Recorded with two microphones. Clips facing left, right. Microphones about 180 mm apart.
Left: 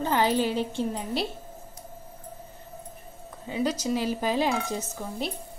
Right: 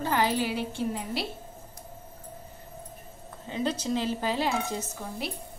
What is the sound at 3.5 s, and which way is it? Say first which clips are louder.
A woman's voice: left 2 dB; 10° left (ahead or behind).